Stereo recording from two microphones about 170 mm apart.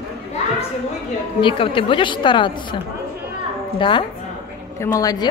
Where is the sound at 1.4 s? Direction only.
30° left (ahead or behind).